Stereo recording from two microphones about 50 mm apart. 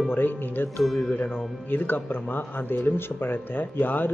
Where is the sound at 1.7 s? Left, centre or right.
Left.